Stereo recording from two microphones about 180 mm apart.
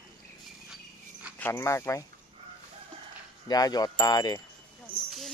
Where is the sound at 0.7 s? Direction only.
5° right (ahead or behind).